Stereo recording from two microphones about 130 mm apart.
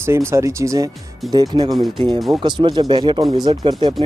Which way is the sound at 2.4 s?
35° right (ahead or behind).